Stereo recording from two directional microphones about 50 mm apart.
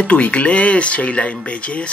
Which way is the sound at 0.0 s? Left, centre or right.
Left.